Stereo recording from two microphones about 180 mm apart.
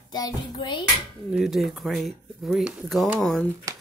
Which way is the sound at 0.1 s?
25° left (ahead or behind).